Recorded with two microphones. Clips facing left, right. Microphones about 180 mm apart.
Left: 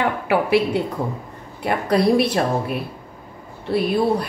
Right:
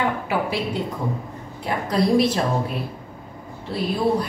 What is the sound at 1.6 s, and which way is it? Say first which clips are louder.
Speech: left 3 dB; 60° left (ahead or behind).